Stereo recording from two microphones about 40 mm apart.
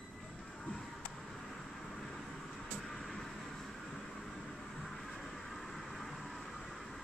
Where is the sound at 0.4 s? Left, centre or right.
Centre.